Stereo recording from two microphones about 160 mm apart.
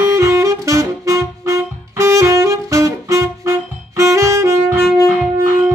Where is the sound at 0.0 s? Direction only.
20° right (ahead or behind).